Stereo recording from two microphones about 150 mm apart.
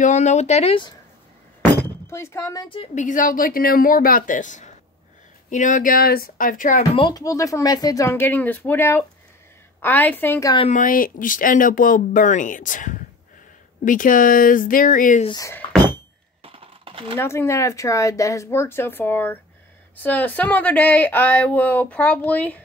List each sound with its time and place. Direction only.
0.0 s speech: 50° left (ahead or behind)
2.0 s speech: 20° left (ahead or behind)
2.9 s speech: 55° left (ahead or behind)
7.0 s speech: 25° left (ahead or behind)
10.7 s speech: 65° left (ahead or behind)
15.3 s speech: 20° left (ahead or behind)
16.4 s coin: 35° right (ahead or behind)
17.2 s speech: 15° left (ahead or behind)